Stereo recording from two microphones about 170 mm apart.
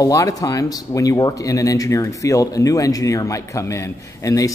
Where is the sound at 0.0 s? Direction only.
20° left (ahead or behind).